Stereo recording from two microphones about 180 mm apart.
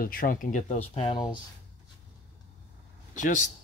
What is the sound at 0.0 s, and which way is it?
Speech, 55° left (ahead or behind).